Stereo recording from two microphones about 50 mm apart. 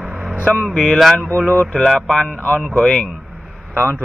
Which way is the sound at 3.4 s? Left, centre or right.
Centre.